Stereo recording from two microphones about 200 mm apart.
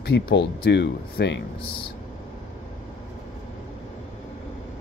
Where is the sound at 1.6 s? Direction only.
25° left (ahead or behind).